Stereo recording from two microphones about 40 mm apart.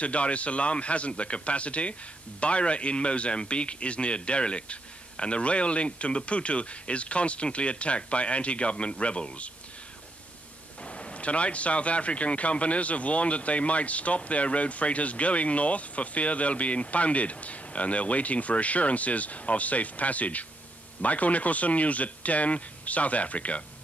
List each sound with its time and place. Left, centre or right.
0.0 s a man's voice: left
10.8 s speech: left